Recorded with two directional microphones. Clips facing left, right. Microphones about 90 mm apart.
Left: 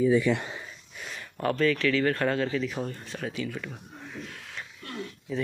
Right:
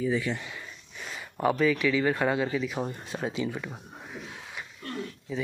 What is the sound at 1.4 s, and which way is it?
Speech, 10° right (ahead or behind).